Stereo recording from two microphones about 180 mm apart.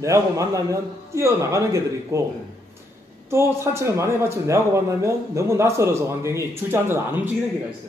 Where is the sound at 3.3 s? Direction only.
15° right (ahead or behind).